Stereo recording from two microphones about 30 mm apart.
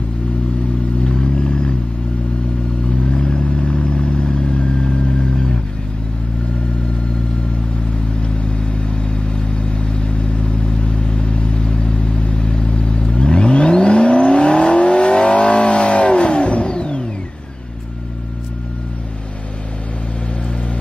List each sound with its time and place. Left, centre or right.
1.0 s vehicle: left
2.9 s vehicle: left
8.2 s vehicle: left